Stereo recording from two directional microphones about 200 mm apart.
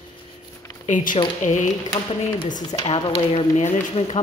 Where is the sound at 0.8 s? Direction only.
40° left (ahead or behind).